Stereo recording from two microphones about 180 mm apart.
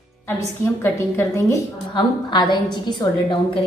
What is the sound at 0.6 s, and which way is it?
A woman's voice, 15° left (ahead or behind).